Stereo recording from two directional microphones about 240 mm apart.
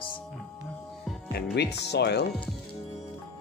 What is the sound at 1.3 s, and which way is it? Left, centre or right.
Speech, left.